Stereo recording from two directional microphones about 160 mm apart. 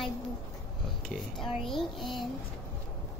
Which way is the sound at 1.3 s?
Centre (ahead or behind).